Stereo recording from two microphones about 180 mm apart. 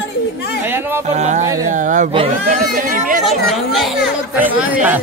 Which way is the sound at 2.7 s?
50° right (ahead or behind).